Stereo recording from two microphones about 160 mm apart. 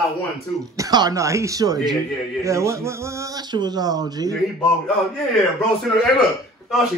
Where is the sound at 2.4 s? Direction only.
20° right (ahead or behind).